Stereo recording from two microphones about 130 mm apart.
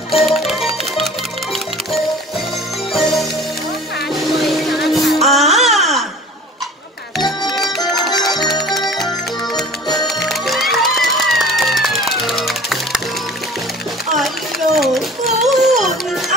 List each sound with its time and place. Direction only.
0.1 s music: centre (ahead or behind)
2.9 s music: centre (ahead or behind)
7.5 s music: centre (ahead or behind)
10.0 s music: centre (ahead or behind)
14.1 s a sound: centre (ahead or behind)